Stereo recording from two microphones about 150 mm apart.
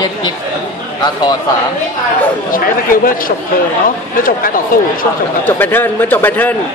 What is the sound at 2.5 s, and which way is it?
Speech, 70° left (ahead or behind).